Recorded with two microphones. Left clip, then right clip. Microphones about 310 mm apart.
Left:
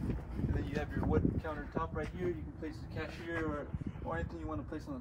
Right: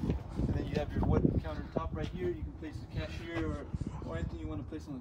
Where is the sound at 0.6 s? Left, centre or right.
Centre.